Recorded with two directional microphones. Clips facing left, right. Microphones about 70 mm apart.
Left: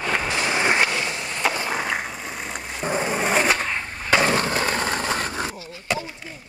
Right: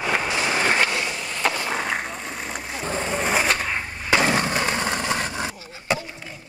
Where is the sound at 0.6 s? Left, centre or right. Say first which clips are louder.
Left 1 dB; centre.